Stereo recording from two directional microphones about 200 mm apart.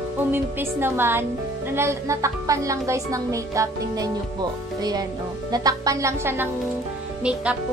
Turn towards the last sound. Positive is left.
turn(degrees=-5)  # may be behind; listen again after turning